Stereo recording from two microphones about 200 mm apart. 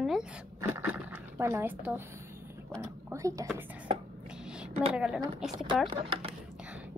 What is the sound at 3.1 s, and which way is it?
Speech, 15° right (ahead or behind).